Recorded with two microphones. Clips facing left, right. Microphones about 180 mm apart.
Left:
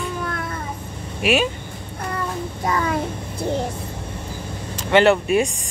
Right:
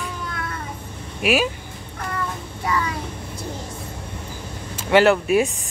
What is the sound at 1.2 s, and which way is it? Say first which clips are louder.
Music: left 1 dB; centre (ahead or behind).